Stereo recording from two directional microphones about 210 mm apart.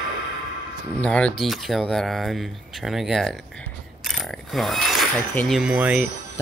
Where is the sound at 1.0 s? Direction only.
5° left (ahead or behind).